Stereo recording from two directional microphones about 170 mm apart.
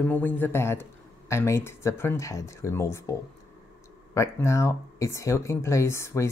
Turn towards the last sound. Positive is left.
turn(degrees=15)  # may be behind; listen again after turning